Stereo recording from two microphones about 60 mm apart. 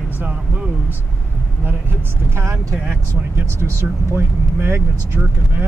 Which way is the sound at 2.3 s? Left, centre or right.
Right.